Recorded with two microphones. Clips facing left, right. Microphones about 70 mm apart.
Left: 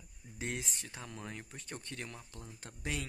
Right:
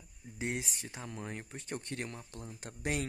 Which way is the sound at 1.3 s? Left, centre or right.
Right.